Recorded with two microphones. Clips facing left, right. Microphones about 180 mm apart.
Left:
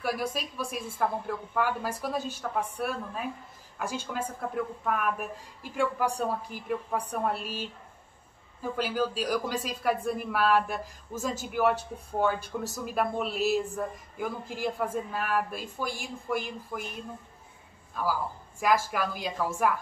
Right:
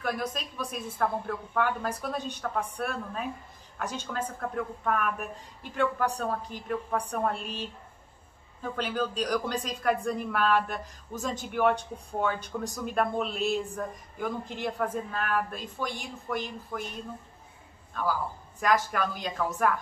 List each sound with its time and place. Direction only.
0.0 s a woman's voice: 10° left (ahead or behind)